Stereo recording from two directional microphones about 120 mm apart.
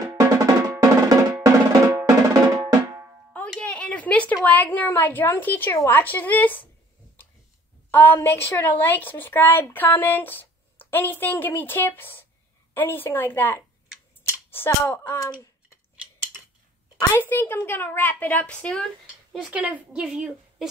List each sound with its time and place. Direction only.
0.1 s drum: 25° right (ahead or behind)
3.3 s a sound: 10° left (ahead or behind)
4.5 s a woman's voice: 15° left (ahead or behind)
7.9 s a woman's voice: 15° left (ahead or behind)
17.1 s a woman's voice: 20° left (ahead or behind)
19.3 s speech: 10° right (ahead or behind)